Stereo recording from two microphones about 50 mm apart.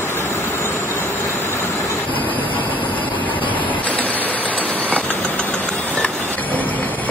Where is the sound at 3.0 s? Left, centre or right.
Left.